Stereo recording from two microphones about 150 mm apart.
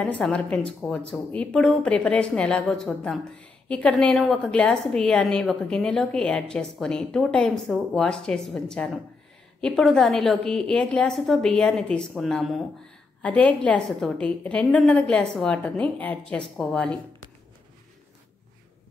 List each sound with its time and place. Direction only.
0.0 s a woman's voice: 5° left (ahead or behind)